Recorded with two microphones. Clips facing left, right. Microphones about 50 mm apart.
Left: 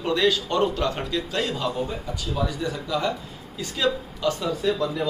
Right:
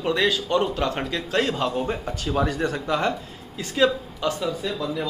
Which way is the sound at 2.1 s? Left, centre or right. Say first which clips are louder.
Right 3 dB; right.